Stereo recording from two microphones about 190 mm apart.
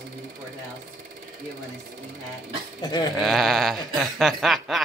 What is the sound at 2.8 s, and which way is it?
Speech, 20° left (ahead or behind).